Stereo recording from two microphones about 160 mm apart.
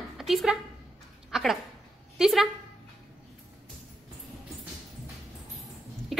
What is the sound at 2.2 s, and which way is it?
Speech, centre (ahead or behind).